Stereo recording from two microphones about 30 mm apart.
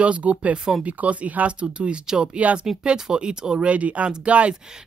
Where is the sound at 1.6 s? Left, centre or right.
Right.